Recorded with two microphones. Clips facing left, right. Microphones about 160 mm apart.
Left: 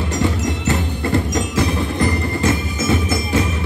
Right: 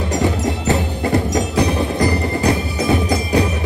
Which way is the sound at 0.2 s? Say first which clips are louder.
Left 1 dB; 20° right (ahead or behind).